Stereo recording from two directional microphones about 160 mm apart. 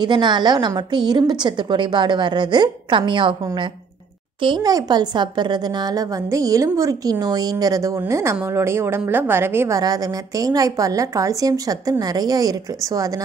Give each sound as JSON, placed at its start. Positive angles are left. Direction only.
{"t": 0.0, "sound": "a woman's voice", "side_deg": -30}